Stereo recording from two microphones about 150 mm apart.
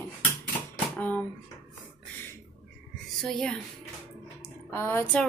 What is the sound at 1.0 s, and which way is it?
Speech, 10° left (ahead or behind).